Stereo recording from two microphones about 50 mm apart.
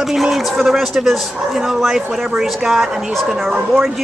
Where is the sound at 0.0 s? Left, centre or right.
Centre.